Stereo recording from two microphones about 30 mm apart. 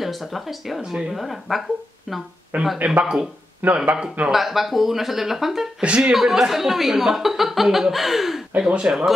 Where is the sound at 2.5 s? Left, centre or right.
Right.